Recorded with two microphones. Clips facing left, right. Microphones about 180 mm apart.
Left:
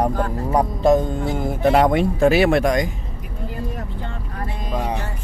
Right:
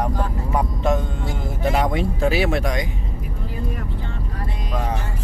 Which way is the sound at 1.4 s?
55° left (ahead or behind).